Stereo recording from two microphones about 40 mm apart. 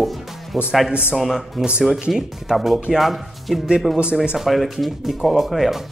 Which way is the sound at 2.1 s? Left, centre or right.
Centre.